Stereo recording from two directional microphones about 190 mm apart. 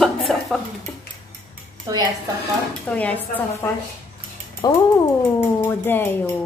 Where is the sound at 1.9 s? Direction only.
20° right (ahead or behind).